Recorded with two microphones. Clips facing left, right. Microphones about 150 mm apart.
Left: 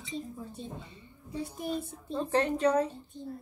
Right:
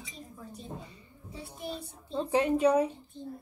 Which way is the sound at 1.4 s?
45° left (ahead or behind).